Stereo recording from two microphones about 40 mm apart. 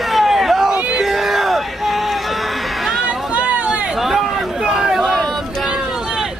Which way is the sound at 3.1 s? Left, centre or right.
Right.